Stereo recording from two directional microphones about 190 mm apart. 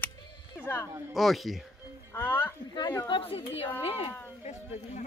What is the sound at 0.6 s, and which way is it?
Music, 10° left (ahead or behind).